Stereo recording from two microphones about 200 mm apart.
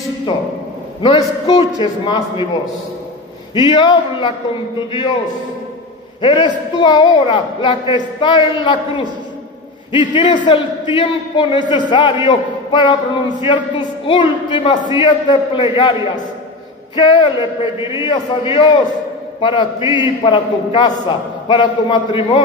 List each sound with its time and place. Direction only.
1.0 s a man's voice: 25° left (ahead or behind)
3.5 s a man's voice: 25° left (ahead or behind)
6.2 s a man's voice: 25° left (ahead or behind)